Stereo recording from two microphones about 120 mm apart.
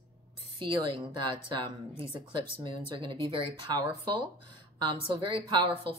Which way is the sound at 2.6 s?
45° right (ahead or behind).